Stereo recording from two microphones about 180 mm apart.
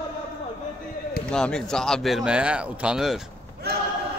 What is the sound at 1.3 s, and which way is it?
A man's voice, 5° left (ahead or behind).